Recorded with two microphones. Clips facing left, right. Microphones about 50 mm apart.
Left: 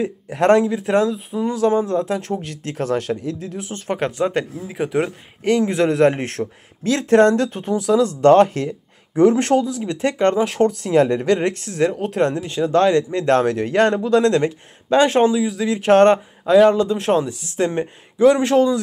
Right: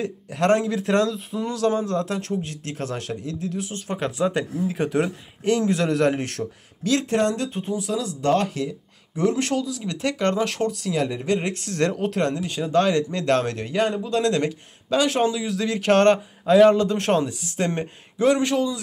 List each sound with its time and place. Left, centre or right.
0.3 s speech: left
0.7 s speech: centre; by 4.6 s left
4.6 s speech: centre
4.9 s speech: left
10.6 s speech: left
11.1 s speech: left
11.7 s speech: centre
12.2 s speech: left
13.7 s speech: left
15.4 s speech: centre
16.4 s speech: centre
17.3 s speech: left